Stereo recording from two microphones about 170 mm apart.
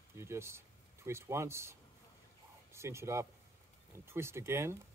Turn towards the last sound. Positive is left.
turn(degrees=-15)  # may be behind; listen again after turning